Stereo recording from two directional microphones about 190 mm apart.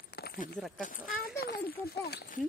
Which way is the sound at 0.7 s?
45° left (ahead or behind).